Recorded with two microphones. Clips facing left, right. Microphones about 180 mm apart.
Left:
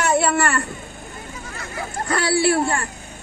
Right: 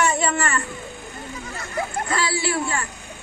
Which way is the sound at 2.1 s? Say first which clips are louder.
Left 7 dB; 65° left (ahead or behind).